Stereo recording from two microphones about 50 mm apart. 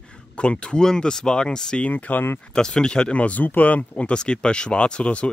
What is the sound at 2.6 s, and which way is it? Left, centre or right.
Speech, centre.